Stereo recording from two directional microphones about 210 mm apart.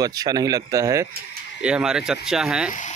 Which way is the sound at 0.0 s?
15° right (ahead or behind).